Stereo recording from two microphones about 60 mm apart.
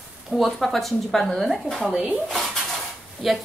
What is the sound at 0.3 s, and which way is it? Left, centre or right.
A woman's voice, centre.